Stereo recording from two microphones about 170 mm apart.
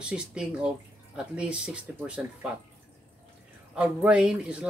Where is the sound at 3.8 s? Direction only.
5° right (ahead or behind).